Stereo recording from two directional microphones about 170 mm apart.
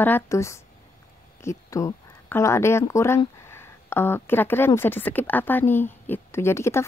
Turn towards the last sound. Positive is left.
turn(degrees=15)  # may be behind; listen again after turning